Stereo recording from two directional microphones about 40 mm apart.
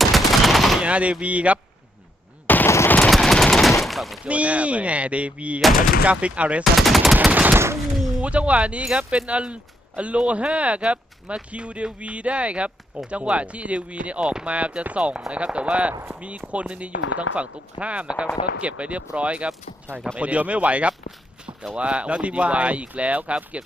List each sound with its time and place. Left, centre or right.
0.0 s gunshot: centre
0.8 s speech: right
2.4 s machine gun: left
3.1 s machine gun: centre
4.2 s speech: right
6.6 s machine gun: centre
7.2 s speech: right
15.9 s speech: right
16.2 s speech: right